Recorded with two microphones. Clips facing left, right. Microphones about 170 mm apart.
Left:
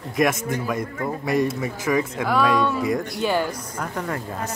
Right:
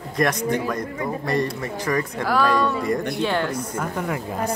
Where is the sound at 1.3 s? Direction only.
5° left (ahead or behind).